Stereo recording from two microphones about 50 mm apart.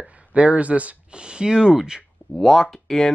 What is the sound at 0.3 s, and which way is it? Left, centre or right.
Speech, right.